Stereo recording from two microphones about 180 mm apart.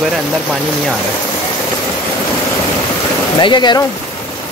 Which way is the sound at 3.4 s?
25° left (ahead or behind).